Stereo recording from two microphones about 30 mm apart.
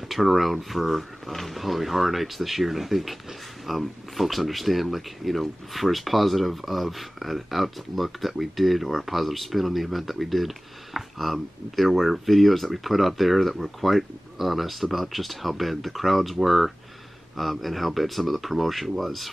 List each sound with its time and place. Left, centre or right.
0.1 s speech: centre